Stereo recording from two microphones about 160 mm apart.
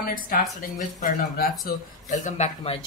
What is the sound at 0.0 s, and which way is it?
Speech, 60° left (ahead or behind).